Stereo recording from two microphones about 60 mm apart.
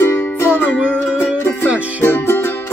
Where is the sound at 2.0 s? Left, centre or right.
Left.